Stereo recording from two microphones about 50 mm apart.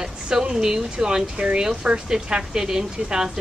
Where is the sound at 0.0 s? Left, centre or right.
Centre.